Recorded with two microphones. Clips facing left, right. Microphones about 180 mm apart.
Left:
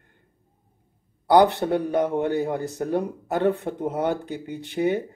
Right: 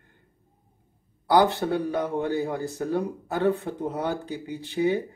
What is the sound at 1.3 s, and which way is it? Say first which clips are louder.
Speech: left 3 dB; 20° left (ahead or behind).